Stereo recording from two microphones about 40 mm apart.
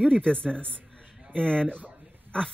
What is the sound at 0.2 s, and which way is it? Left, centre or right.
Speech, left.